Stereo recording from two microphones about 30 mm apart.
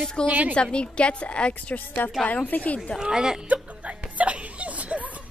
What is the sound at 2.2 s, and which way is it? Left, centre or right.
Speech, left.